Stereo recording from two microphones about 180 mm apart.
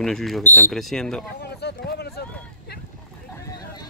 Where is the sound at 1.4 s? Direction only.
65° left (ahead or behind).